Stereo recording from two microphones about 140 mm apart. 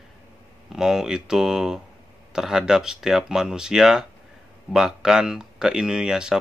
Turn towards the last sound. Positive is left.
turn(degrees=-5)  # may be behind; listen again after turning